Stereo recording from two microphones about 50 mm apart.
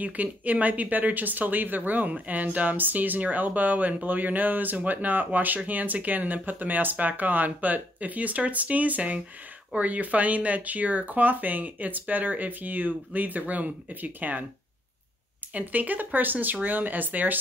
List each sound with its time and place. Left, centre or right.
0.0 s speech: right
15.5 s speech: right